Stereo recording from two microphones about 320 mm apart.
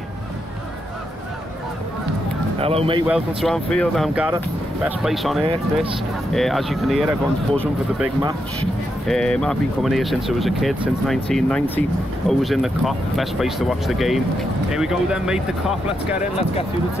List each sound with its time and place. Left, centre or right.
2.6 s speech: centre
3.1 s speech: centre